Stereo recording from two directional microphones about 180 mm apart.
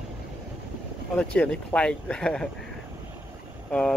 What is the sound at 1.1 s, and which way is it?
Speech, 5° left (ahead or behind).